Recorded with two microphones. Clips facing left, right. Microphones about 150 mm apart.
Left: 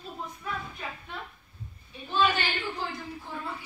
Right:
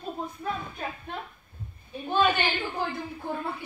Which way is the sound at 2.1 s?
55° right (ahead or behind).